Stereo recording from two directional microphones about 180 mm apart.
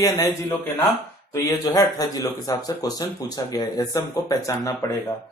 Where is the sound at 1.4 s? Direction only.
20° left (ahead or behind).